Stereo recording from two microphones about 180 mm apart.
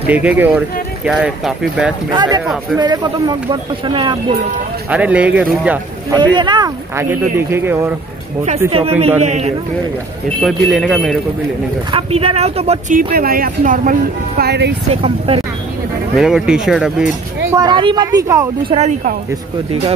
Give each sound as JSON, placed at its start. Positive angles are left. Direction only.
{"t": 0.0, "sound": "speech", "side_deg": -10}
{"t": 2.0, "sound": "speech", "side_deg": -25}
{"t": 4.8, "sound": "speech", "side_deg": -10}
{"t": 6.1, "sound": "speech", "side_deg": -25}
{"t": 8.7, "sound": "speech", "side_deg": -35}
{"t": 10.4, "sound": "speech", "side_deg": 0}
{"t": 11.9, "sound": "speech", "side_deg": -30}
{"t": 12.9, "sound": "speech", "side_deg": -55}
{"t": 14.4, "sound": "speech", "side_deg": -65}
{"t": 15.0, "sound": "speech", "side_deg": -30}
{"t": 16.2, "sound": "speech", "side_deg": 0}
{"t": 17.5, "sound": "speech", "side_deg": -20}
{"t": 18.7, "sound": "speech", "side_deg": -35}